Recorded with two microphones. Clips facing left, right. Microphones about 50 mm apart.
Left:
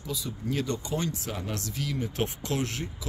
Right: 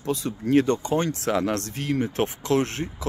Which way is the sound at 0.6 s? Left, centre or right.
Right.